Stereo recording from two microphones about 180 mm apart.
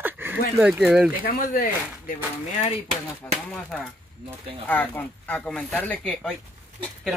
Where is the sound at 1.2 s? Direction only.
55° left (ahead or behind).